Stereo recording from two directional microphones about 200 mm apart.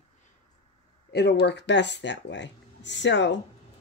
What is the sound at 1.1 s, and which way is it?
Speech, 55° left (ahead or behind).